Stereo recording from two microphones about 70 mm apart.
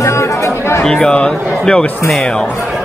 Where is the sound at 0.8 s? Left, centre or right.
Centre.